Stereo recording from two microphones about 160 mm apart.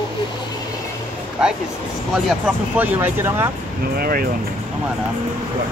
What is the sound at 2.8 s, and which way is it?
Speech, 10° right (ahead or behind).